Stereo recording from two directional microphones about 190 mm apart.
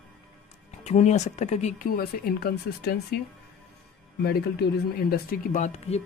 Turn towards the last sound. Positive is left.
turn(degrees=35)  # may be behind; listen again after turning